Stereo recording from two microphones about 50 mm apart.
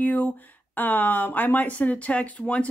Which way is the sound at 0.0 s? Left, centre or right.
Left.